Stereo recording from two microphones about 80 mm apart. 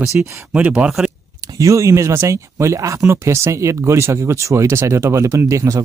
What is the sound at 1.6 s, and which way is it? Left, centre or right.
Speech, right.